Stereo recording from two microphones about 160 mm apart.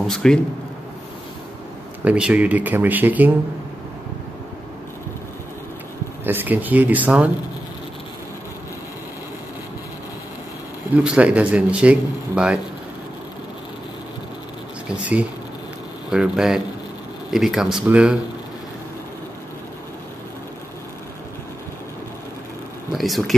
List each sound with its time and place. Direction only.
0.0 s speech: centre (ahead or behind)
2.0 s speech: 5° right (ahead or behind)
6.2 s speech: 10° right (ahead or behind)
11.1 s speech: 10° right (ahead or behind)
16.1 s speech: 5° right (ahead or behind)
22.9 s speech: centre (ahead or behind)